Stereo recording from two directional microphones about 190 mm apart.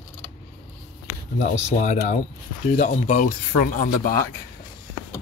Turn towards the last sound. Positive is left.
turn(degrees=50)  # may be behind; listen again after turning